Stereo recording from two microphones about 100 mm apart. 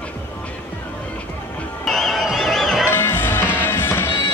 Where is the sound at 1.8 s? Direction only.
Centre (ahead or behind).